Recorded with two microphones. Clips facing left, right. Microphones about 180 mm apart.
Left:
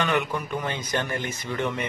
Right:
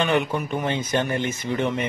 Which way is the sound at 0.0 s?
25° right (ahead or behind).